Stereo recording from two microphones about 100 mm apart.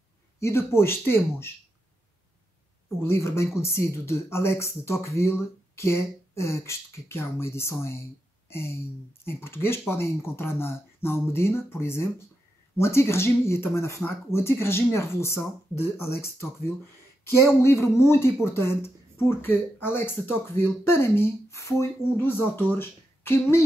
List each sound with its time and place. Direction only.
0.4 s speech: 25° left (ahead or behind)
3.0 s speech: 25° left (ahead or behind)